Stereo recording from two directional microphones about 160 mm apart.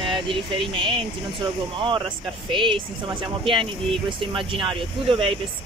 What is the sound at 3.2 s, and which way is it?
Speech, 30° right (ahead or behind).